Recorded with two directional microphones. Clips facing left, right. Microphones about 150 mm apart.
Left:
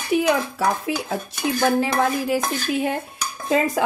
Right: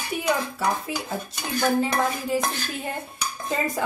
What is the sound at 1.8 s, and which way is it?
Dishes, 80° left.